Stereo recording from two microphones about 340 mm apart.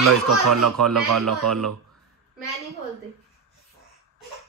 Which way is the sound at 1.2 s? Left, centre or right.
Centre.